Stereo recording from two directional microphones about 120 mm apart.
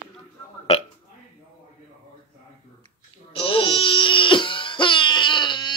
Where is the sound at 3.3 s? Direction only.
45° left (ahead or behind).